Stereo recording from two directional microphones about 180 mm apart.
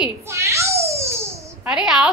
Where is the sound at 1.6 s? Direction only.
5° right (ahead or behind).